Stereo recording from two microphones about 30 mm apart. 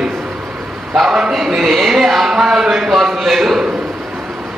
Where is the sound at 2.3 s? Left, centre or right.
Right.